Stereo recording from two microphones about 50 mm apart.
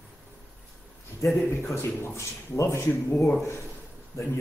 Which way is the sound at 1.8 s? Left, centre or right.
Left.